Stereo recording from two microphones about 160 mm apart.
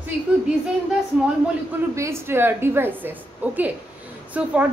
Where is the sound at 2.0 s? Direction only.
15° right (ahead or behind).